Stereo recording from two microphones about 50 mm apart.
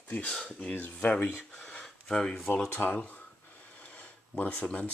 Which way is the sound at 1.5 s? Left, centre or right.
Centre.